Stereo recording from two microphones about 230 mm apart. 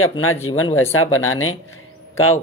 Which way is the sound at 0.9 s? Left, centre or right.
Left.